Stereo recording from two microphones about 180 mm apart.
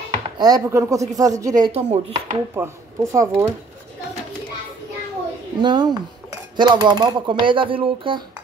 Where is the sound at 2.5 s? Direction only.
15° right (ahead or behind).